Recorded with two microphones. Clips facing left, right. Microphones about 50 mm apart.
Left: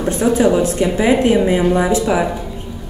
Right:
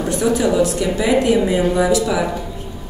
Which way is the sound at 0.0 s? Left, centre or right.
Left.